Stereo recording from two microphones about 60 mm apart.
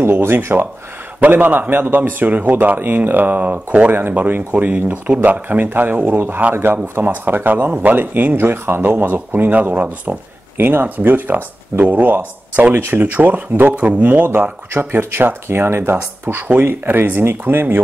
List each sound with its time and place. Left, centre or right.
0.0 s speech: right
6.1 s speech: right
14.7 s speech: right